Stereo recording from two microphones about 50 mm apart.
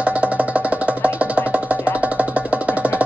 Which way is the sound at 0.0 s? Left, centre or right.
Right.